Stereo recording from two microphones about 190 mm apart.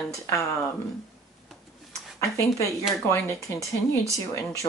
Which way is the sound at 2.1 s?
15° left (ahead or behind).